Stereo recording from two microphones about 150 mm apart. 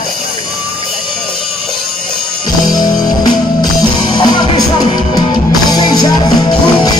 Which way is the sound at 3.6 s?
30° left (ahead or behind).